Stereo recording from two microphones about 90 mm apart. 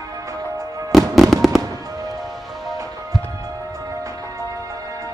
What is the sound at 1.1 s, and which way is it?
Fireworks, centre (ahead or behind).